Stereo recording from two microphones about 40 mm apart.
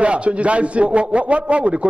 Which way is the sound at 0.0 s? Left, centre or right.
Right.